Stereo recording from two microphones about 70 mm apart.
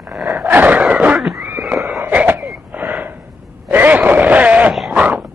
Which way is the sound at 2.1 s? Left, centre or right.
Right.